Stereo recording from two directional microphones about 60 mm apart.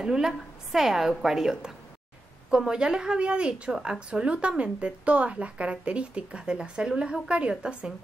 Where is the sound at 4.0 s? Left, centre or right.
Centre.